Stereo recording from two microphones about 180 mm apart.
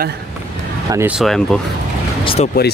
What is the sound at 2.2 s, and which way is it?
Speech, 30° left (ahead or behind).